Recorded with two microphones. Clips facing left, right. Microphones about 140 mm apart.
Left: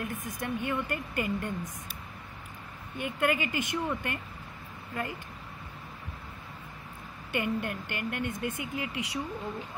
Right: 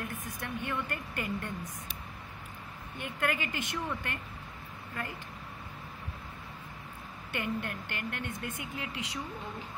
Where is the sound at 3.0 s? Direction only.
15° left (ahead or behind).